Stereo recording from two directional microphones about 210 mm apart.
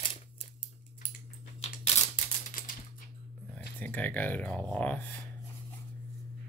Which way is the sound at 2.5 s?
40° left (ahead or behind).